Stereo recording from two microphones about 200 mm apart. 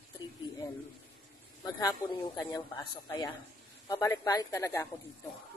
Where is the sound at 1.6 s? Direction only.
20° left (ahead or behind).